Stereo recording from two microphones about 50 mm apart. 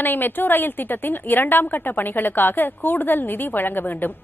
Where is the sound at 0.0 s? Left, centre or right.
Left.